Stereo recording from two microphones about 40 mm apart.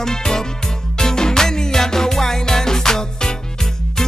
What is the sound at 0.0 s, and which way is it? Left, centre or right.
Music, centre.